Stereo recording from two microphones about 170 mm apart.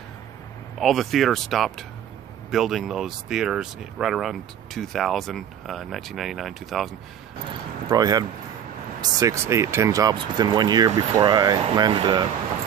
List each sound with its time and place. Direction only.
0.7 s speech: centre (ahead or behind)
7.9 s speech: 20° right (ahead or behind)